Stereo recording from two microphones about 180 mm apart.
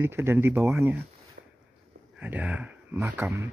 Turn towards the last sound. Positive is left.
turn(degrees=-15)  # may be behind; listen again after turning